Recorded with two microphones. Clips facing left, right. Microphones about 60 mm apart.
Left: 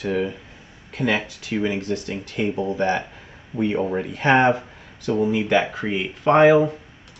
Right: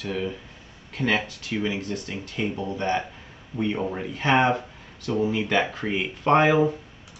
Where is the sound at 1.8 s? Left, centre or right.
Left.